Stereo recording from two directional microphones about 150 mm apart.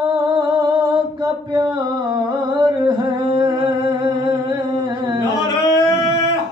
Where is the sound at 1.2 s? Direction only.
30° right (ahead or behind).